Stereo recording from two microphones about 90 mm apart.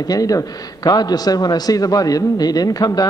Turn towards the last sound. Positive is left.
turn(degrees=45)  # may be behind; listen again after turning